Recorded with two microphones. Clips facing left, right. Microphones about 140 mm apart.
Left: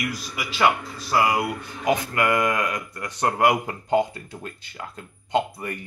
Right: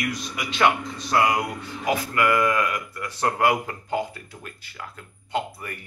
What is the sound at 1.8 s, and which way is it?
Speech, 25° left (ahead or behind).